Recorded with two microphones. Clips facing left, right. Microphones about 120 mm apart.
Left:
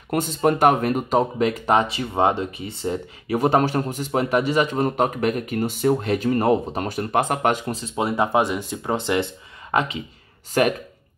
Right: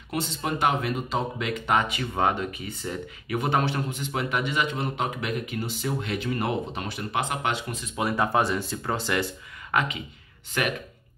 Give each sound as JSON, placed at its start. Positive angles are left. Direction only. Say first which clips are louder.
{"t": 0.1, "sound": "speech", "louder": "left 9 dB", "side_deg": 50}
{"t": 7.8, "sound": "speech", "louder": "left 2 dB", "side_deg": 25}